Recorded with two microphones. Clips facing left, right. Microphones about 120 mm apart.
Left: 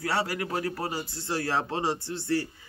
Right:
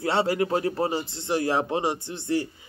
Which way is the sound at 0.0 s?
25° right (ahead or behind).